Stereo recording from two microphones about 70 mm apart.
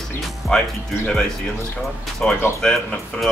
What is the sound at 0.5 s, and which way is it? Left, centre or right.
Speech, centre.